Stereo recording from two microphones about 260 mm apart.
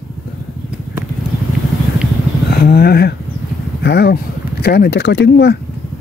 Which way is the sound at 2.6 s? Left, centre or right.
Left.